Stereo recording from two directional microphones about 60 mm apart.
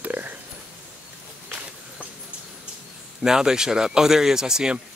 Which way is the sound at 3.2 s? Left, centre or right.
Centre.